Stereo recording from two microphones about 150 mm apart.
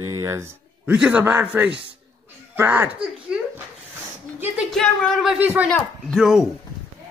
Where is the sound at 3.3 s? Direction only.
5° right (ahead or behind).